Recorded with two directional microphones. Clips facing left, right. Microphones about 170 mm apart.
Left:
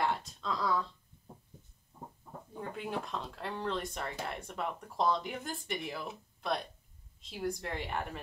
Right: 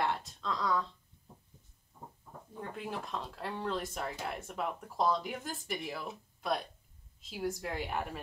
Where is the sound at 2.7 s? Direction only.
Centre (ahead or behind).